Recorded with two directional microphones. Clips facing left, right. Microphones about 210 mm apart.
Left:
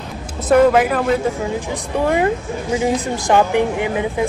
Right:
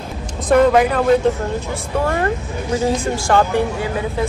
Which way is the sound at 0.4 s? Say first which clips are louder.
Even; 5° left (ahead or behind).